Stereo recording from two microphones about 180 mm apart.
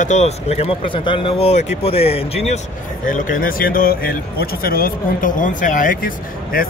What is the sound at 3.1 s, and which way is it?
A man's voice, 50° left (ahead or behind).